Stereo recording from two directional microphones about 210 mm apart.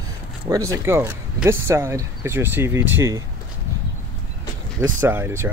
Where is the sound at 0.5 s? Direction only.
20° right (ahead or behind).